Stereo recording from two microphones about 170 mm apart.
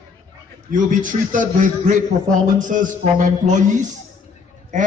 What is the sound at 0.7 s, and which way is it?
A man's voice, 50° right (ahead or behind).